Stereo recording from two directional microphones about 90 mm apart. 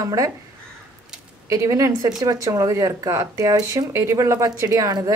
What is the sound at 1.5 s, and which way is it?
Speech, 35° right (ahead or behind).